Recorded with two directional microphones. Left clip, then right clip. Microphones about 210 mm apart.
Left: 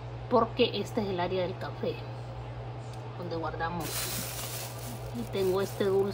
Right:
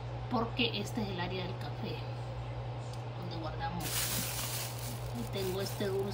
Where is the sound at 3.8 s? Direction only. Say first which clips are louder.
Left 1 dB; centre (ahead or behind).